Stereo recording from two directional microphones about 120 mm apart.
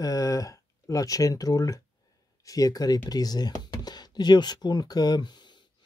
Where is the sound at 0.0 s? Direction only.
30° left (ahead or behind).